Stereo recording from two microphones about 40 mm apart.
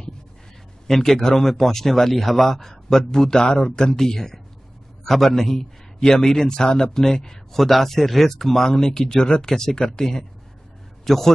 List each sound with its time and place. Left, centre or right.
0.8 s speech: centre